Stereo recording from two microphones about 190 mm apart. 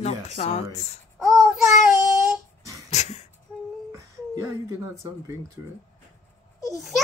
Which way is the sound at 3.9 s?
15° right (ahead or behind).